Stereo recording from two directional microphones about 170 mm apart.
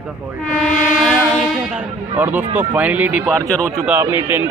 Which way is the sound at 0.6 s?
Centre (ahead or behind).